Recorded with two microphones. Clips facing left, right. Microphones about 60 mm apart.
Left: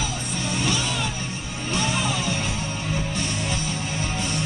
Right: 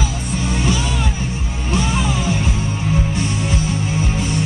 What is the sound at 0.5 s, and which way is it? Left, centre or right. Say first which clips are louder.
Music: right 5 dB; right.